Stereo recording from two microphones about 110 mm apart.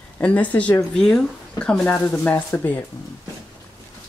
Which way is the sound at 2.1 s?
20° left (ahead or behind).